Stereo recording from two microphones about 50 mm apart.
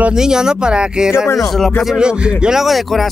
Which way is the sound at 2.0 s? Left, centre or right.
Centre.